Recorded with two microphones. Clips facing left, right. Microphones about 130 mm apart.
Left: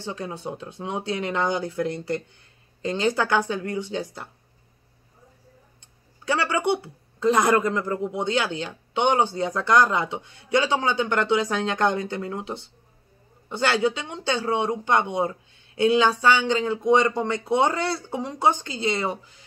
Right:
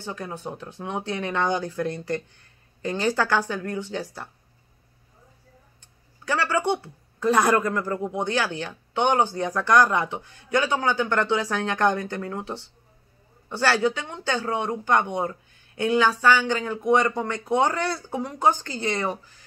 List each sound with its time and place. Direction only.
0.0 s speech: 25° left (ahead or behind)
6.2 s speech: 20° left (ahead or behind)